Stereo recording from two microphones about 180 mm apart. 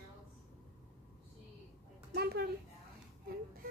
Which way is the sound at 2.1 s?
65° right (ahead or behind).